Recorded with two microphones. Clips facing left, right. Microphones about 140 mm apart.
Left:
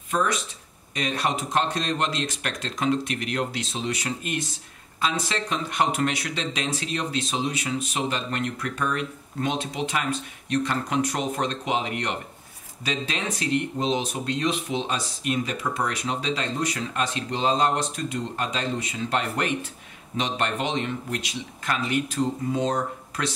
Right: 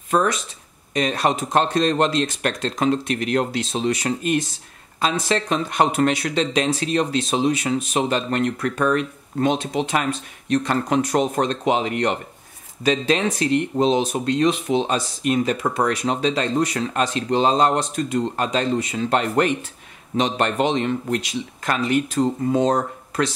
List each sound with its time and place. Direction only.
0.1 s speech: 50° right (ahead or behind)
5.3 s speech: 45° right (ahead or behind)